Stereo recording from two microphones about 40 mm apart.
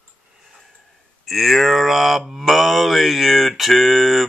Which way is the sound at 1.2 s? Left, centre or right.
Centre.